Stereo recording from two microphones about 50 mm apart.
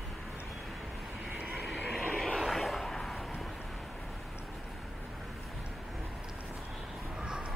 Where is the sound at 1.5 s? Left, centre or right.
Centre.